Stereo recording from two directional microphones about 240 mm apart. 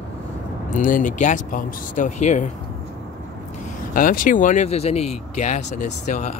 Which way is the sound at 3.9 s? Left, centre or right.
Left.